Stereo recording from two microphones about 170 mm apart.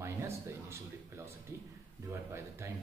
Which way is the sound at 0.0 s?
15° right (ahead or behind).